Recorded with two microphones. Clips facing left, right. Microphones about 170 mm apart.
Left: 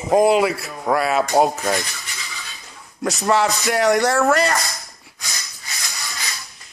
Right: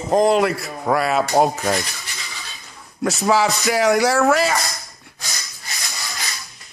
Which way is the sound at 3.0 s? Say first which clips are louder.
Right 1 dB; centre (ahead or behind).